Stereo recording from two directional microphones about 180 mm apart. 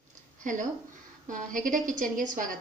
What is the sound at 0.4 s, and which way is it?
A woman's voice, 45° right (ahead or behind).